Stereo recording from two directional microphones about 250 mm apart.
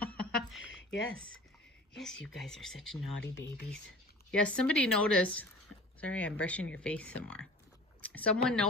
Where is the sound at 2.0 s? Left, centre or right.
Centre.